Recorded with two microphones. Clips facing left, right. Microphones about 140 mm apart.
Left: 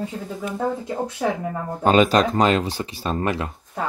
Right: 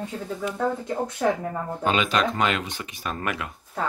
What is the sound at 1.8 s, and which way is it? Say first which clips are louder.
Speech: left 7 dB; 40° left (ahead or behind).